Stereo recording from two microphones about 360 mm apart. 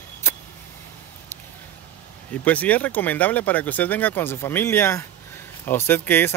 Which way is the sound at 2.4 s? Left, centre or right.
Centre.